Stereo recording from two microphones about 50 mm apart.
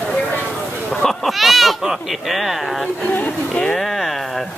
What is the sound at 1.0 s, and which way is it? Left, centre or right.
Speech, centre.